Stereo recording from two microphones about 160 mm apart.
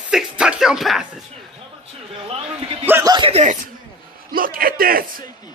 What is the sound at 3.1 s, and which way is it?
Speech, 35° right (ahead or behind).